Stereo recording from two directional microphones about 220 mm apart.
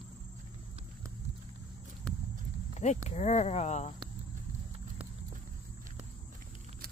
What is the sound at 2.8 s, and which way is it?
Speech, 35° left (ahead or behind).